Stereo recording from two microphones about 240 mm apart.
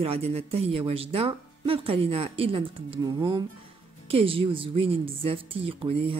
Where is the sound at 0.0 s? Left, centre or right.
Right.